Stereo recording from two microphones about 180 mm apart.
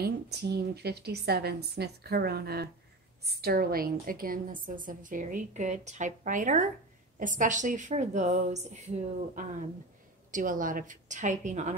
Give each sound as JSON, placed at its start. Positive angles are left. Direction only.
{"t": 0.0, "sound": "a woman's voice", "side_deg": -65}